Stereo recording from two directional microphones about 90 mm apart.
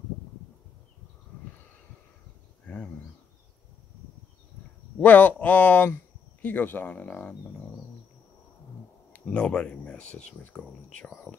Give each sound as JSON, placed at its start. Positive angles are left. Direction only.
{"t": 2.6, "sound": "a sound", "side_deg": 15}
{"t": 5.0, "sound": "speech", "side_deg": 20}
{"t": 9.1, "sound": "speech", "side_deg": 15}